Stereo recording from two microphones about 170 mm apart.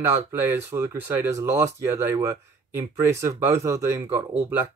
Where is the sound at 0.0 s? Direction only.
15° right (ahead or behind).